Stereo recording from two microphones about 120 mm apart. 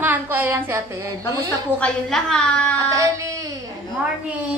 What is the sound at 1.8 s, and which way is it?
Speech, 5° left (ahead or behind).